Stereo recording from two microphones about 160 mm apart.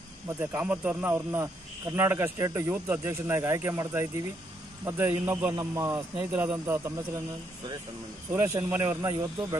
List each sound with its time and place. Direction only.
0.4 s speech: 10° right (ahead or behind)
7.0 s speech: 25° right (ahead or behind)
8.3 s speech: 15° right (ahead or behind)